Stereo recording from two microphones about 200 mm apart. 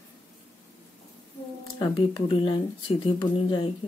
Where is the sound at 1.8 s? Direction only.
25° left (ahead or behind).